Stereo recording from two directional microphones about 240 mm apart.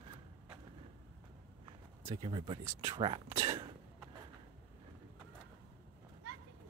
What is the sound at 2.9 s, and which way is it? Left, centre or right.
Speech, right.